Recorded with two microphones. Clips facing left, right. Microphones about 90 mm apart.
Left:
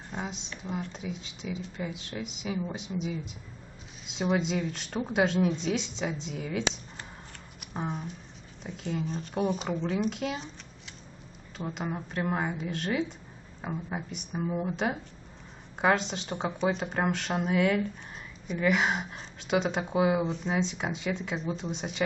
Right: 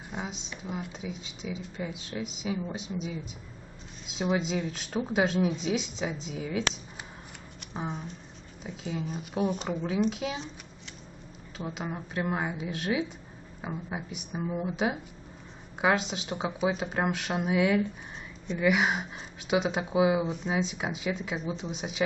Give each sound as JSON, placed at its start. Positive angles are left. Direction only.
{"t": 0.1, "sound": "speech", "side_deg": -5}
{"t": 11.5, "sound": "speech", "side_deg": 0}